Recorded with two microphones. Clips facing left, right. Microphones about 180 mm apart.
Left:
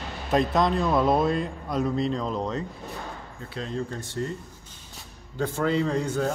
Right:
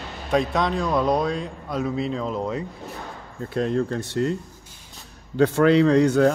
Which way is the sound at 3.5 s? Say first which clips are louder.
Right 9 dB; 60° right (ahead or behind).